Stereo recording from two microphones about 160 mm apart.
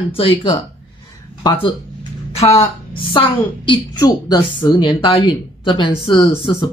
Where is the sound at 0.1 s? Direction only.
35° left (ahead or behind).